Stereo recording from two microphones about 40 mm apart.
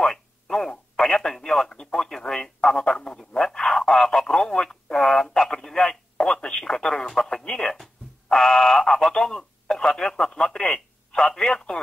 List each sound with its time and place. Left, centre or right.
0.0 s radio: centre
10.7 s telephone: centre